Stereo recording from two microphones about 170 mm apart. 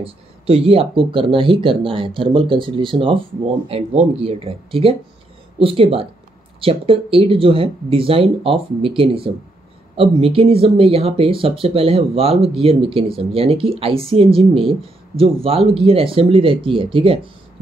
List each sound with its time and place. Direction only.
0.0 s speech: 35° right (ahead or behind)